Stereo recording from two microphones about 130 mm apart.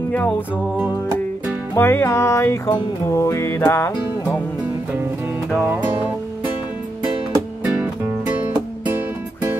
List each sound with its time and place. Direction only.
1.8 s music: 15° left (ahead or behind)
5.5 s music: 15° right (ahead or behind)
7.6 s music: 10° right (ahead or behind)